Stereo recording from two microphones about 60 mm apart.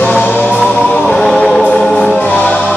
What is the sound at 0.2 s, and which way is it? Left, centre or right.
Music, left.